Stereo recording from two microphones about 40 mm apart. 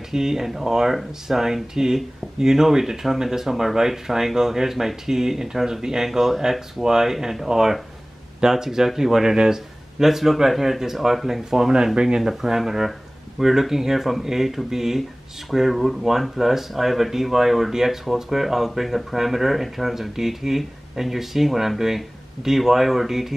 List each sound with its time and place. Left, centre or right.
0.1 s speech: centre